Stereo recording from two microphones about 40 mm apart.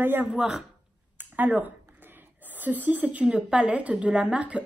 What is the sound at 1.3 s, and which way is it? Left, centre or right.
Speech, right.